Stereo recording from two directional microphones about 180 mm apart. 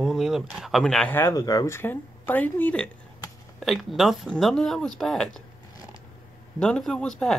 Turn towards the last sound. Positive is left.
turn(degrees=5)  # may be behind; listen again after turning